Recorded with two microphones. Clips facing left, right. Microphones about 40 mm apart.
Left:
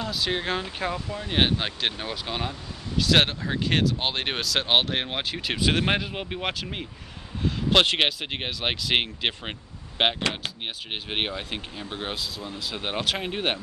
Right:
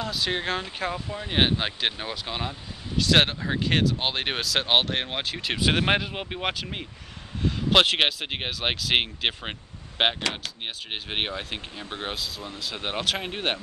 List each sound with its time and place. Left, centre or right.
0.0 s speech: centre